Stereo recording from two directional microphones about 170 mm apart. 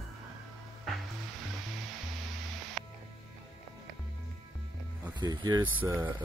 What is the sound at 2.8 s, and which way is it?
Music, centre (ahead or behind).